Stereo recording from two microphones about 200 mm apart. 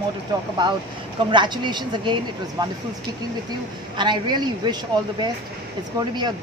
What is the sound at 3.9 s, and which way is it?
Speech, 20° right (ahead or behind).